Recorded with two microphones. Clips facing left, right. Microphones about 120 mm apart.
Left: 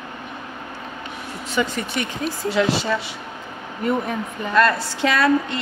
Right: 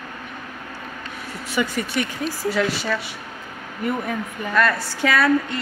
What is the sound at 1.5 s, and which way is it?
A woman's voice, 20° left (ahead or behind).